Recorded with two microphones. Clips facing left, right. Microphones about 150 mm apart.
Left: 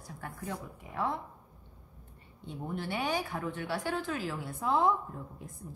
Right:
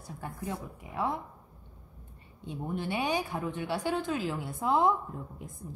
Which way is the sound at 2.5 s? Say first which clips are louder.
Right 3 dB; 15° right (ahead or behind).